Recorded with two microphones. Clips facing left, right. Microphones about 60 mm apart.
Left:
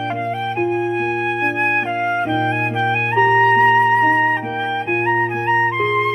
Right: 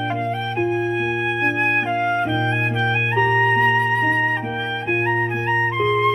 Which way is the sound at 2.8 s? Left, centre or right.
Centre.